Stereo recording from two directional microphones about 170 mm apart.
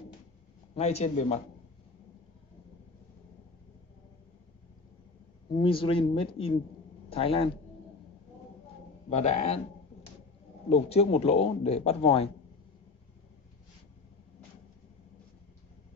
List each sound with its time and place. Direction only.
0.7 s a man's voice: 40° left (ahead or behind)
5.6 s a man's voice: 30° left (ahead or behind)
9.1 s a man's voice: 40° left (ahead or behind)
10.7 s a man's voice: 35° left (ahead or behind)